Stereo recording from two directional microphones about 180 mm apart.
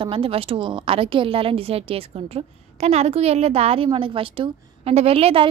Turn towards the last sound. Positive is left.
turn(degrees=-30)  # may be behind; listen again after turning